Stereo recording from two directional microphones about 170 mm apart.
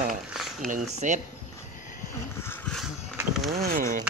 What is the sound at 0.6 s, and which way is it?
Speech, 45° right (ahead or behind).